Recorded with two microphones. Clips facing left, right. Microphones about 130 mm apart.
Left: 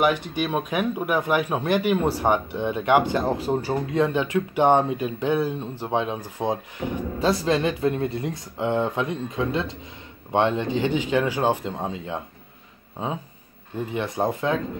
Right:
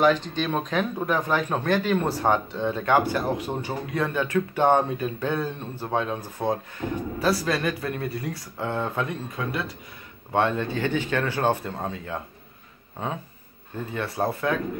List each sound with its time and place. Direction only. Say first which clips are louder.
0.0 s speech: right 1 dB; 10° left (ahead or behind); by 4.0 s 30° left (ahead or behind)
4.0 s speech: left 1 dB; 15° left (ahead or behind)
13.7 s speech: left 2 dB; 15° left (ahead or behind)